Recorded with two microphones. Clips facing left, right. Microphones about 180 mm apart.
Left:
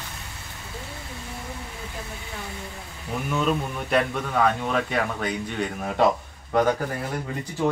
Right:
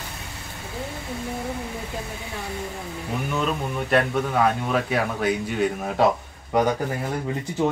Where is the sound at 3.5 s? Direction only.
Centre (ahead or behind).